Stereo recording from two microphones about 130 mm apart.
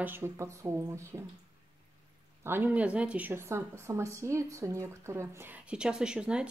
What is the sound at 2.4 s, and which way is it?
A woman's voice, 15° right (ahead or behind).